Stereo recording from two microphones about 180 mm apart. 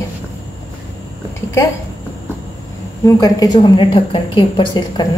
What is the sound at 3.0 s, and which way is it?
A woman's voice, 20° left (ahead or behind).